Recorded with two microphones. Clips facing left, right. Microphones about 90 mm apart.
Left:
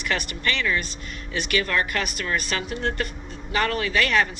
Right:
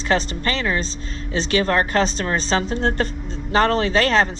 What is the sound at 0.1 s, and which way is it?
A woman's voice, 30° right (ahead or behind).